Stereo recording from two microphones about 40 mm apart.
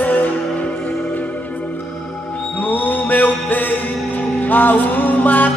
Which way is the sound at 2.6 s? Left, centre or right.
Left.